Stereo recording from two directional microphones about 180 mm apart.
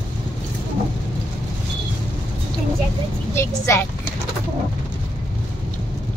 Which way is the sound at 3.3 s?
15° left (ahead or behind).